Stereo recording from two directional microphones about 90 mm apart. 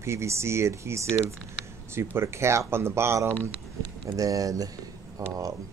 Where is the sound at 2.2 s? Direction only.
30° right (ahead or behind).